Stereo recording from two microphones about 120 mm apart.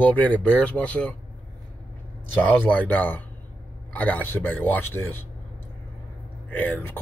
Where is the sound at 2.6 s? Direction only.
15° left (ahead or behind).